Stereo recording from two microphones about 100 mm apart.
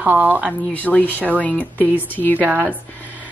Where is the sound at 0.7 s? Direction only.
15° left (ahead or behind).